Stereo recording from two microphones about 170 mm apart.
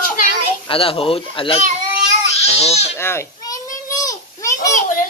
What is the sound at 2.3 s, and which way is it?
Baby cry, 35° left (ahead or behind).